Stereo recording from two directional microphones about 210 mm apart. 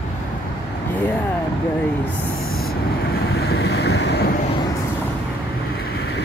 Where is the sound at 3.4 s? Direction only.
50° left (ahead or behind).